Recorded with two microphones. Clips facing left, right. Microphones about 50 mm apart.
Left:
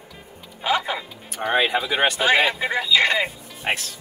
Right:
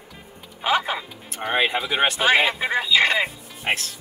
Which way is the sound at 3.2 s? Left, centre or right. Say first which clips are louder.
Even; centre.